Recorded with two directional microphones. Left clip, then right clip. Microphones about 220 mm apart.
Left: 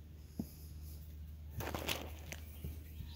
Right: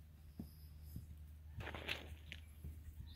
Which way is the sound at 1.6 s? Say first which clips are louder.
Left 5 dB; 25° left (ahead or behind).